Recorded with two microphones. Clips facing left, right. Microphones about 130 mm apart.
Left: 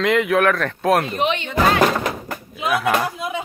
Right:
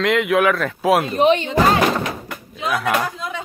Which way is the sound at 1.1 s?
35° right (ahead or behind).